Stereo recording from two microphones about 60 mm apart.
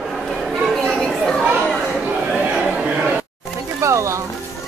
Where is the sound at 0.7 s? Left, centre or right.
Centre.